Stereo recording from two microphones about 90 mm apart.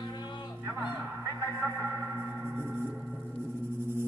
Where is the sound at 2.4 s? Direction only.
25° right (ahead or behind).